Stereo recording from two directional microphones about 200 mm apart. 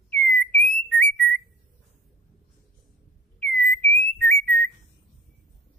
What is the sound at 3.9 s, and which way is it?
Whistling, 10° left (ahead or behind).